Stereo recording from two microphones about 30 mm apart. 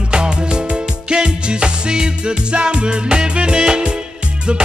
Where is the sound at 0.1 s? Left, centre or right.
Right.